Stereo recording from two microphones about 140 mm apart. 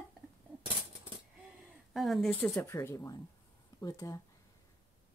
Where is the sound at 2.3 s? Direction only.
15° left (ahead or behind).